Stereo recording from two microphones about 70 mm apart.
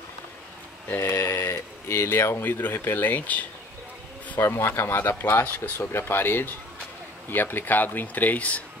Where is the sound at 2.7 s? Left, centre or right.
Left.